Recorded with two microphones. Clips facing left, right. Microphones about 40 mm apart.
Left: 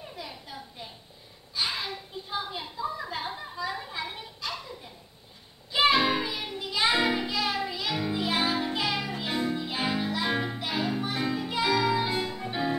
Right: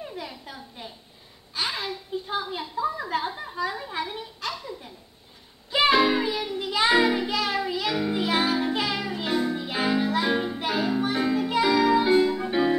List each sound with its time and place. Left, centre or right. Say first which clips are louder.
1.5 s a sound: right 2 dB; right
6.1 s music: right 5 dB; right
6.6 s music: right 4 dB; right
10.3 s music: right 4 dB; centre
10.6 s music: right 5 dB; right